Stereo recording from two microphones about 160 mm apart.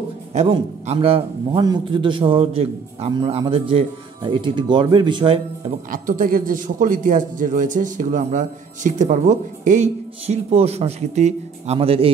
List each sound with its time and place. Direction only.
0.3 s a man's voice: 45° right (ahead or behind)
5.9 s a man's voice: 60° right (ahead or behind); by 12.1 s 35° right (ahead or behind)